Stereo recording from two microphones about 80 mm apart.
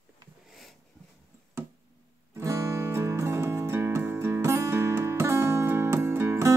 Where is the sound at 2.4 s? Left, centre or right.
Right.